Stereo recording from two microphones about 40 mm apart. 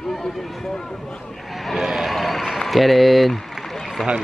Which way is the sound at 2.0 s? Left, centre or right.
Centre.